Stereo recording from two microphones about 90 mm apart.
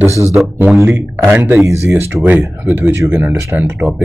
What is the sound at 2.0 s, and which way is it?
Speech, 30° right (ahead or behind).